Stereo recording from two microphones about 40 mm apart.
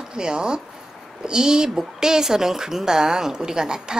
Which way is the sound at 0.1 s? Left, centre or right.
Right.